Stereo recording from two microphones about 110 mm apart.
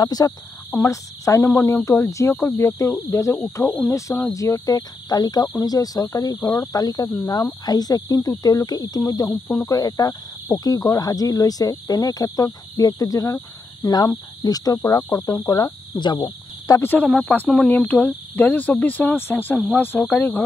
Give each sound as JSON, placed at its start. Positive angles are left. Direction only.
{"t": 0.0, "sound": "cricket", "side_deg": 35}
{"t": 16.8, "sound": "speech", "side_deg": 15}
{"t": 19.7, "sound": "cricket", "side_deg": 20}